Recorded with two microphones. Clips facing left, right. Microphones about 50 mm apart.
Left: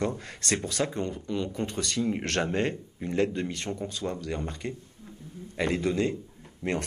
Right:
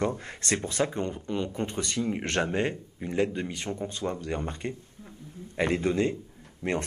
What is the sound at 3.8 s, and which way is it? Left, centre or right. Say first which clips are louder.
Speech: right 2 dB; right.